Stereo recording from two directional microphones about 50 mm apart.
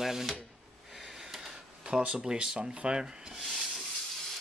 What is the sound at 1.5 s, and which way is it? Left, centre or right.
Speech, centre.